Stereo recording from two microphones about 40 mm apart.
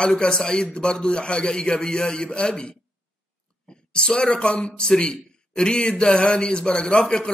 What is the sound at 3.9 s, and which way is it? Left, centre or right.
A man's voice, left.